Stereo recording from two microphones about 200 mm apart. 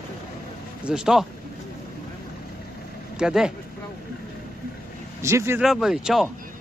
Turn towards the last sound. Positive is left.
turn(degrees=0)  # may be behind; listen again after turning